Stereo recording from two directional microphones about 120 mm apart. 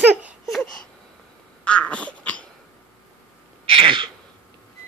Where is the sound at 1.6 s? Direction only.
10° left (ahead or behind).